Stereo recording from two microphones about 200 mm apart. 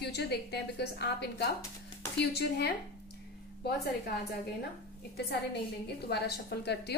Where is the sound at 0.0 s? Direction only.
55° left (ahead or behind).